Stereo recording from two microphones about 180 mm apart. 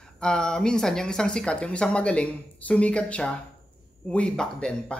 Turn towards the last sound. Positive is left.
turn(degrees=5)  # may be behind; listen again after turning